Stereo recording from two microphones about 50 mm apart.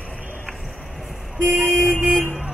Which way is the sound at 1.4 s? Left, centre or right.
Right.